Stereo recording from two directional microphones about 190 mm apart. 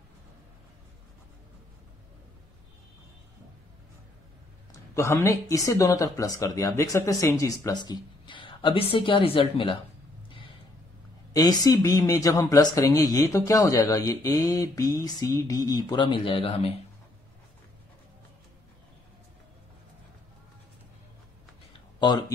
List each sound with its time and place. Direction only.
4.9 s speech: 15° left (ahead or behind)
11.3 s speech: 20° left (ahead or behind)